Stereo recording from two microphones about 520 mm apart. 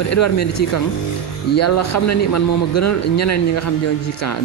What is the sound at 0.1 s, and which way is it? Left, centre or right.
A man's voice, left.